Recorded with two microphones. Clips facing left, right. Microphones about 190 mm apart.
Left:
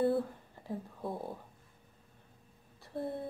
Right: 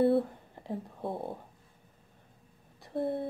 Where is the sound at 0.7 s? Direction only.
25° right (ahead or behind).